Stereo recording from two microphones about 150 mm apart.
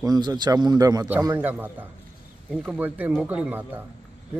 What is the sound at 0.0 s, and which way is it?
A man's voice, 25° right (ahead or behind).